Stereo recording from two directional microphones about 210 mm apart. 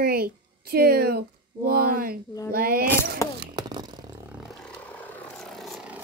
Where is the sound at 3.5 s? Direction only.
20° right (ahead or behind).